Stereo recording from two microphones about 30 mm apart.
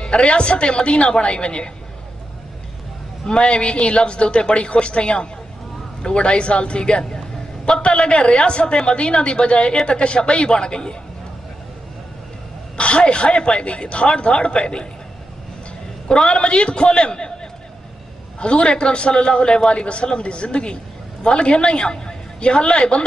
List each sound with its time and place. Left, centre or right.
0.0 s a man's voice: left
3.3 s a man's voice: left
12.7 s a man's voice: left
16.1 s a man's voice: left
18.4 s a man's voice: left